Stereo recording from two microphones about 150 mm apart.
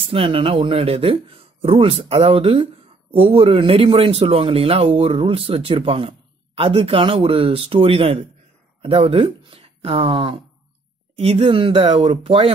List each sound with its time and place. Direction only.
0.0 s speech: 35° right (ahead or behind)